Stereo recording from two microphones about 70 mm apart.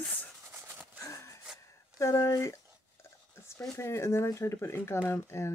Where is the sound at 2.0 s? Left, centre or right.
Left.